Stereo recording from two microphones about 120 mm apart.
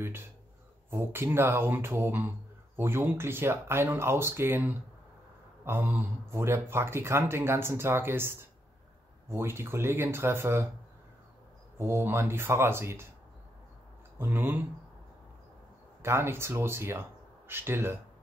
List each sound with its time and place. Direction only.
0.8 s speech: 20° right (ahead or behind)
11.8 s speech: 20° right (ahead or behind)
14.1 s speech: 20° right (ahead or behind)
16.0 s speech: 20° right (ahead or behind)